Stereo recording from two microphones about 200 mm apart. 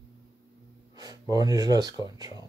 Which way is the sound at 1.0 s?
20° right (ahead or behind).